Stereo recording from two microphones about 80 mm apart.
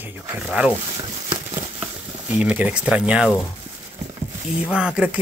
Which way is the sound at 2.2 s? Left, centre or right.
Centre.